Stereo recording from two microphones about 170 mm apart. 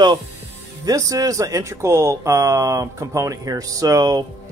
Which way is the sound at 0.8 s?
20° right (ahead or behind).